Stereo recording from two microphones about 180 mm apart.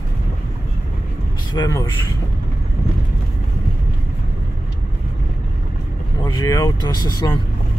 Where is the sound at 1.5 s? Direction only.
20° left (ahead or behind).